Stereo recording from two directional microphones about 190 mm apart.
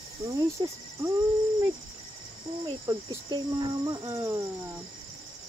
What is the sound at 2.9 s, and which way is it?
Speech, 20° right (ahead or behind).